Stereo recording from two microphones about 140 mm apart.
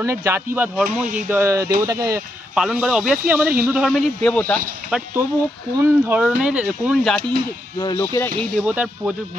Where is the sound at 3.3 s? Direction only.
15° right (ahead or behind).